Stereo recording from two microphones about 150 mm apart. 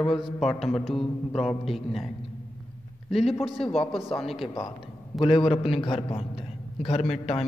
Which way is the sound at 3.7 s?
40° left (ahead or behind).